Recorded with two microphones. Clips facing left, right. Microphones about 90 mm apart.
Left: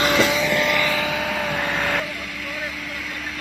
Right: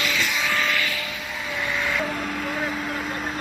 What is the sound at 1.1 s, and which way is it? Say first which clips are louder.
Vehicle: left 7 dB; 75° left (ahead or behind).